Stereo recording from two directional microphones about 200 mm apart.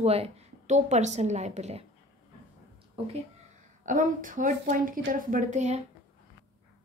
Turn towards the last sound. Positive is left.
turn(degrees=-35)  # may be behind; listen again after turning